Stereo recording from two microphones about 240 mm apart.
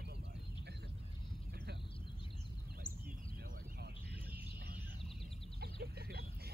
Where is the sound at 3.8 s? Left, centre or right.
Right.